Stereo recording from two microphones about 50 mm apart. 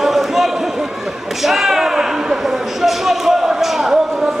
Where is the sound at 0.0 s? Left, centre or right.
Centre.